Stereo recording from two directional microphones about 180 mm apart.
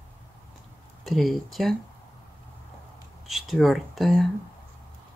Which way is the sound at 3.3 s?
Centre (ahead or behind).